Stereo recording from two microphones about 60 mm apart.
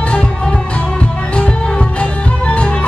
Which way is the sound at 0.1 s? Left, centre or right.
Centre.